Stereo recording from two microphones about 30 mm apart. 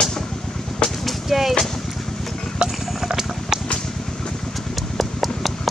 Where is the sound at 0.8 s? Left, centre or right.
Left.